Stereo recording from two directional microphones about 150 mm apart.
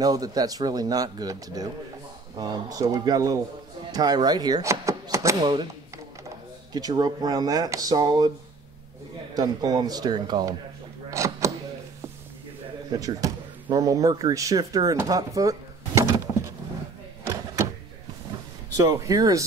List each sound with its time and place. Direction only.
0.0 s speech: 25° right (ahead or behind)
5.4 s speech: 30° right (ahead or behind)
9.3 s speech: 25° right (ahead or behind)
11.1 s a sound: 20° right (ahead or behind)
12.9 s speech: 25° right (ahead or behind)
18.8 s speech: 20° right (ahead or behind)